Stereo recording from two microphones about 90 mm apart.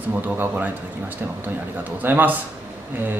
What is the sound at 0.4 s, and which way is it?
Speech, 20° right (ahead or behind).